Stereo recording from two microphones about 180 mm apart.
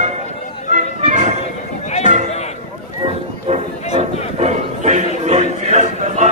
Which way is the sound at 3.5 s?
40° right (ahead or behind).